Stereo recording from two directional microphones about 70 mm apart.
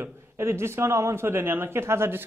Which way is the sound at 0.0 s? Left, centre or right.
Right.